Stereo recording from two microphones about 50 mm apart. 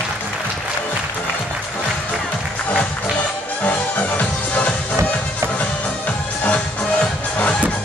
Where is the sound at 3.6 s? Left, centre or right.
Left.